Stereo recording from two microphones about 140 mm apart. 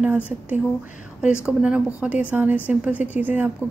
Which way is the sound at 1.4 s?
5° right (ahead or behind).